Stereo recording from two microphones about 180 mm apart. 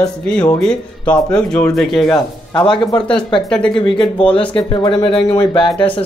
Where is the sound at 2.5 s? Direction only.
25° left (ahead or behind).